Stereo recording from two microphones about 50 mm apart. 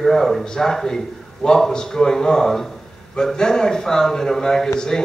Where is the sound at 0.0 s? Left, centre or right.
Centre.